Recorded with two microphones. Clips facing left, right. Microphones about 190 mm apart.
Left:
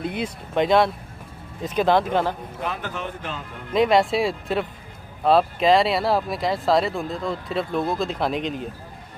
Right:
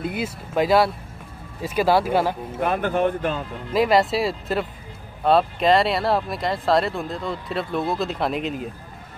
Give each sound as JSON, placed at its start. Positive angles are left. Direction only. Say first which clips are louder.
{"t": 0.0, "sound": "speech", "louder": "even", "side_deg": -5}
{"t": 2.6, "sound": "speech", "louder": "right 9 dB", "side_deg": -55}
{"t": 3.7, "sound": "speech", "louder": "even", "side_deg": -5}